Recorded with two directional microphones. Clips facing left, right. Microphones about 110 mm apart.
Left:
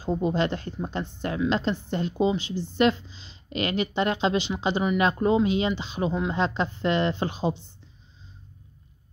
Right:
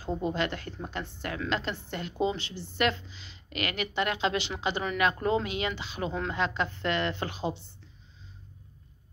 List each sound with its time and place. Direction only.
0.0 s speech: 20° left (ahead or behind)